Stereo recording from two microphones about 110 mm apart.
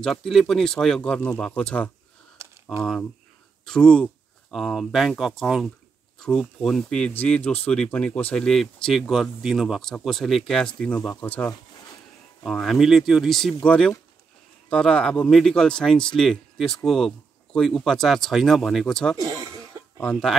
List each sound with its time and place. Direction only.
0.0 s a man's voice: 5° left (ahead or behind)
2.4 s a sound: 25° right (ahead or behind)
2.8 s a man's voice: 5° left (ahead or behind)
12.4 s a man's voice: centre (ahead or behind)
19.1 s chuckle: 35° right (ahead or behind)
20.0 s speech: 10° left (ahead or behind)